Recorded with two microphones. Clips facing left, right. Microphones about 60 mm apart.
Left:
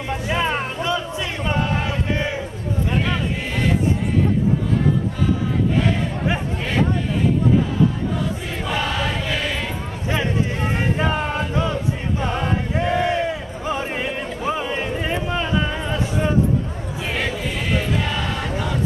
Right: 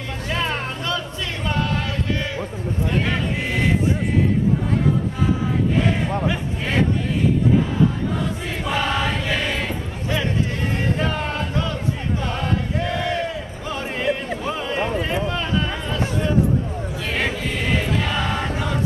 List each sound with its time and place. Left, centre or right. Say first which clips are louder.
0.3 s music: left 2 dB; centre
1.5 s chant: left 1 dB; left
8.6 s choir: right 1 dB; centre
10.8 s a sound: left 2 dB; centre
17.9 s choir: right 1 dB; centre
18.2 s choir: right 2 dB; right